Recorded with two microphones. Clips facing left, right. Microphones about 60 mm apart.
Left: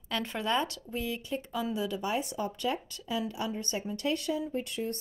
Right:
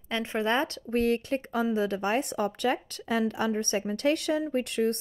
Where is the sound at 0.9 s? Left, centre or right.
Right.